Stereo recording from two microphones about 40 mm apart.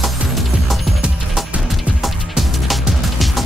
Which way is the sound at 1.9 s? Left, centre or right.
Right.